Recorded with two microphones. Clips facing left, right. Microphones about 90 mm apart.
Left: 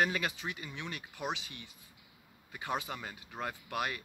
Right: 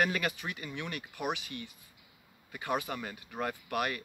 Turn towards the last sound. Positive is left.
turn(degrees=15)  # may be behind; listen again after turning